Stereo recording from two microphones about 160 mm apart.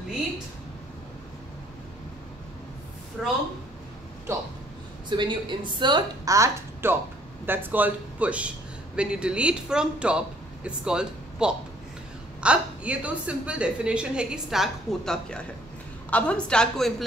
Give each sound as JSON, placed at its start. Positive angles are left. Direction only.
{"t": 3.2, "sound": "speech", "side_deg": 0}
{"t": 5.1, "sound": "a man's voice", "side_deg": -30}